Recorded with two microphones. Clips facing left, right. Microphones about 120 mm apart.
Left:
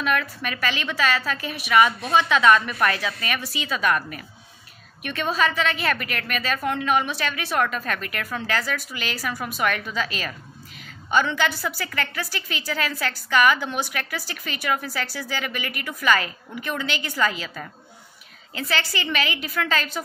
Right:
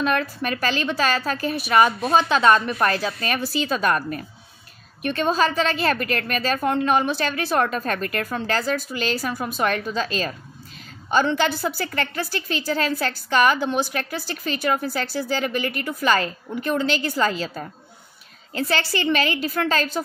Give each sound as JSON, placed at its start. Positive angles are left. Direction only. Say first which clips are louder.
{"t": 0.0, "sound": "a woman's voice", "louder": "right 3 dB", "side_deg": -35}